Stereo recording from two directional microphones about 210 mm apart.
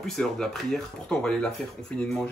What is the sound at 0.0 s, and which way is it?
Speech, centre (ahead or behind).